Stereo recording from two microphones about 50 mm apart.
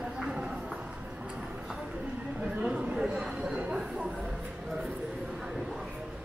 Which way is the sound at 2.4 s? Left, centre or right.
Right.